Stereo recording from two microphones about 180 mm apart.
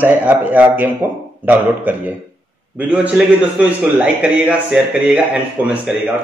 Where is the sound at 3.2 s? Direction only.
10° right (ahead or behind).